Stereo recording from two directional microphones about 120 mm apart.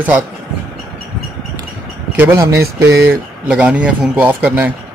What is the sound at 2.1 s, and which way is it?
Speech, 20° right (ahead or behind).